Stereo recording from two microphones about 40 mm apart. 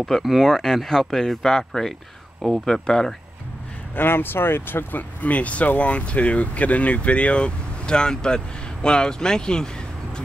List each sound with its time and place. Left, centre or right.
0.2 s speech: centre
3.9 s speech: left
4.9 s speech: left